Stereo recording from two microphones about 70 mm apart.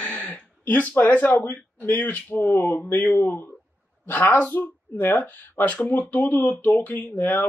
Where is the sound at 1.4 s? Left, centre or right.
Left.